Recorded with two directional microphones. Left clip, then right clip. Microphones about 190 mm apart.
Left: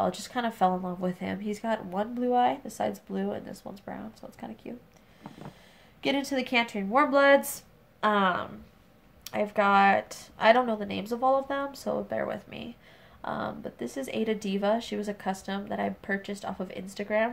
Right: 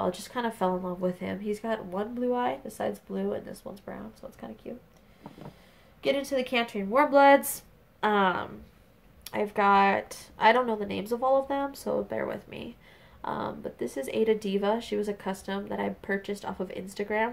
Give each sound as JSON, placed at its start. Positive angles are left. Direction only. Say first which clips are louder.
{"t": 0.0, "sound": "speech", "louder": "left 1 dB", "side_deg": 10}
{"t": 5.2, "sound": "a sound", "louder": "left 1 dB", "side_deg": 20}
{"t": 5.9, "sound": "speech", "louder": "right 1 dB", "side_deg": 20}